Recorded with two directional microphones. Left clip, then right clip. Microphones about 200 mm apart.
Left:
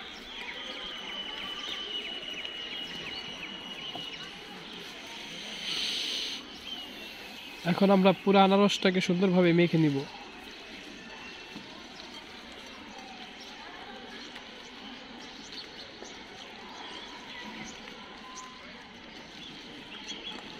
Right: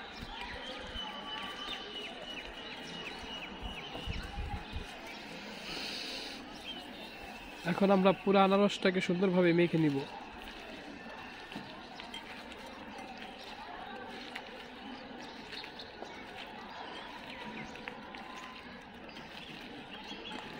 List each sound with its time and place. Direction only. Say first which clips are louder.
5.7 s vehicle: left 9 dB; 5° right (ahead or behind)
7.6 s speech: left 4 dB; 35° left (ahead or behind)